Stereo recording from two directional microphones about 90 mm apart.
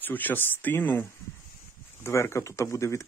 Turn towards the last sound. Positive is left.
turn(degrees=35)  # may be behind; listen again after turning